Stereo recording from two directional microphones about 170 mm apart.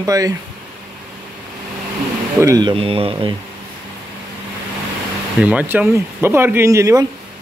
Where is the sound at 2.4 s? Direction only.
20° right (ahead or behind).